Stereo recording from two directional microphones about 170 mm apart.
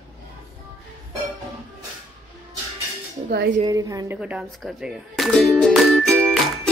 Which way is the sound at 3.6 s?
20° right (ahead or behind).